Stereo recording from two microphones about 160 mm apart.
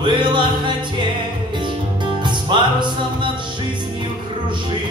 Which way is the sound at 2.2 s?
30° right (ahead or behind).